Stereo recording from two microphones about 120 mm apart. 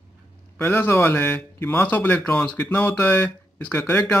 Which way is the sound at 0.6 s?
20° left (ahead or behind).